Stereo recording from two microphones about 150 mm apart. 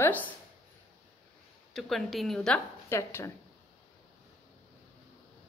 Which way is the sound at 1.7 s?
Centre (ahead or behind).